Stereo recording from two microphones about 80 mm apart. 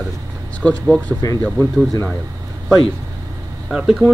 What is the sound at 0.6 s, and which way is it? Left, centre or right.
Speech, centre.